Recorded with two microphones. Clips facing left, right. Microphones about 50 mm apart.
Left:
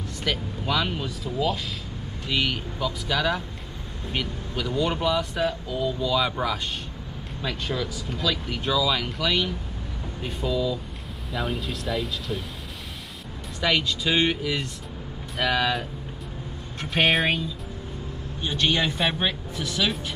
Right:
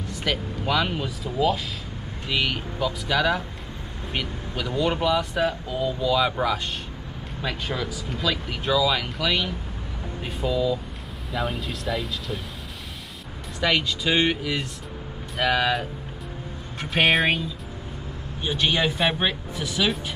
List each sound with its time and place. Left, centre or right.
0.2 s speech: centre
13.6 s speech: centre